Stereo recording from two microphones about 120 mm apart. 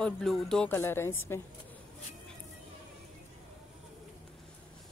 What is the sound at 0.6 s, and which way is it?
Speech, 20° left (ahead or behind).